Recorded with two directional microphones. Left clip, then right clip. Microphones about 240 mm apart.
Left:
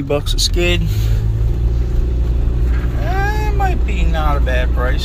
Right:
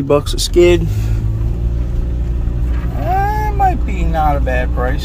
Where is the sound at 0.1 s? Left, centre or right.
Right.